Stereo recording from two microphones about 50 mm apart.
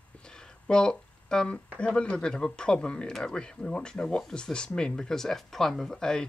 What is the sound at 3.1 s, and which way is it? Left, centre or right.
Speech, centre.